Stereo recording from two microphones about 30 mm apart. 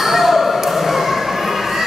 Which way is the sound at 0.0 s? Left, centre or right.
Centre.